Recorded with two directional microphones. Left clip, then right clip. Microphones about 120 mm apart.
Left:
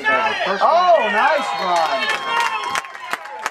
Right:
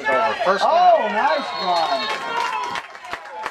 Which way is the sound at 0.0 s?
20° left (ahead or behind).